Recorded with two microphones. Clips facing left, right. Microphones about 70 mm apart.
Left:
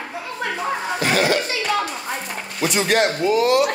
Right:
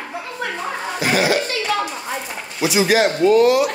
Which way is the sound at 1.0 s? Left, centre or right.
Centre.